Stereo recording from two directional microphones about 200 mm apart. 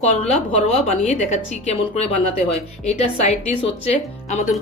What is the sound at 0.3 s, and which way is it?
A woman's voice, 35° left (ahead or behind).